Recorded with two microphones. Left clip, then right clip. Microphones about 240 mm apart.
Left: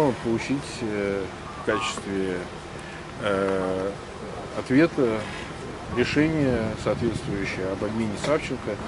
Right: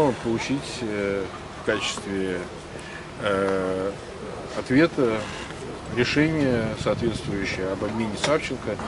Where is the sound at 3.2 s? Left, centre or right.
Centre.